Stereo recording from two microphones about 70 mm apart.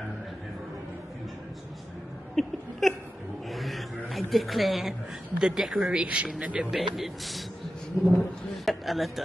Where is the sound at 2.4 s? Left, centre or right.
Centre.